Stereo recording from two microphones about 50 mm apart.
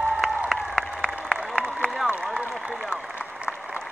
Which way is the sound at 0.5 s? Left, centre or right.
Centre.